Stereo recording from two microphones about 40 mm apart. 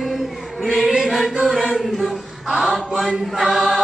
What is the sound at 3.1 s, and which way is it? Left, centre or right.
Choir, centre.